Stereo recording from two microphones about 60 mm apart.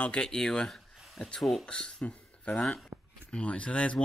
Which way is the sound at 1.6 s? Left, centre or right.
Centre.